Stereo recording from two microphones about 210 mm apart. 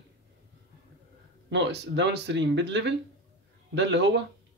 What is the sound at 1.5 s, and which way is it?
Speech, 55° right (ahead or behind).